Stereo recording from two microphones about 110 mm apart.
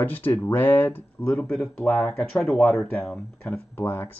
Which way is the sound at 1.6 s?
20° left (ahead or behind).